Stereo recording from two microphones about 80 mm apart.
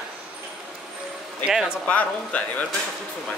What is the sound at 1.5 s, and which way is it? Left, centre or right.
Speech, centre.